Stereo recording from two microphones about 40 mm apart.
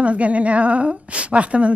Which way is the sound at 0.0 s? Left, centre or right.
Right.